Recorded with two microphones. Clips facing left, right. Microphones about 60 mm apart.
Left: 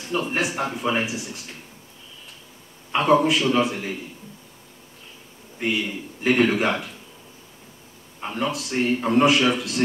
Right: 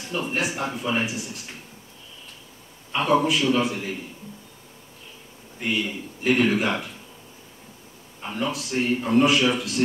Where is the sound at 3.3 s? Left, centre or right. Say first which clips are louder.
Left 1 dB; left.